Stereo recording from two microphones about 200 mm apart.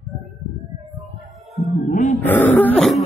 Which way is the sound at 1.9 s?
40° left (ahead or behind).